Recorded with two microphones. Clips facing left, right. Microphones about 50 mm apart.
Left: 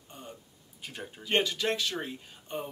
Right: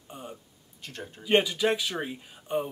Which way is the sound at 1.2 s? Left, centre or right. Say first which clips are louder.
Right 5 dB; centre.